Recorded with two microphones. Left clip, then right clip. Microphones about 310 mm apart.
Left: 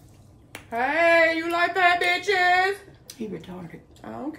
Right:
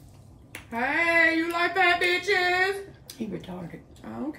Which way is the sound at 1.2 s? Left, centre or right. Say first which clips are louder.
Left 1 dB; centre.